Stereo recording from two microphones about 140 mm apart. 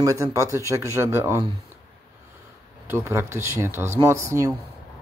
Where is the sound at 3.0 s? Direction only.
20° right (ahead or behind).